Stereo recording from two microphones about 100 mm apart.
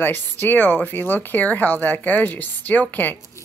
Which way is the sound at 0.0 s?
20° left (ahead or behind).